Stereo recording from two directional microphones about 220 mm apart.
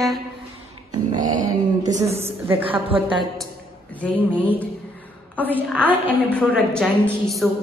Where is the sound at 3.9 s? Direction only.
5° left (ahead or behind).